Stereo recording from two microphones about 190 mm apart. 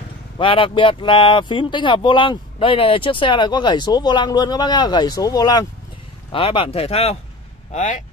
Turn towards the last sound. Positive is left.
turn(degrees=40)  # may be behind; listen again after turning